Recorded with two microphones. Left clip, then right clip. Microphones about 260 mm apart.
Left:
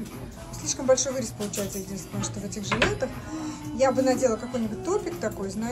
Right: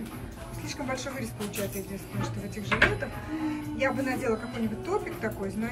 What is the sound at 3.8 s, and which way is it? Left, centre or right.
A woman's voice, centre.